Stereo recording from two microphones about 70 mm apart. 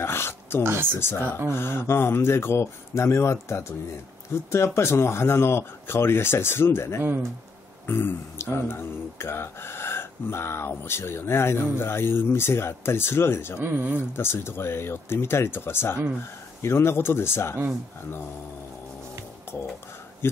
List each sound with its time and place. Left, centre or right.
0.0 s a sound: left
0.9 s speech: left
13.7 s speech: right
14.1 s speech: left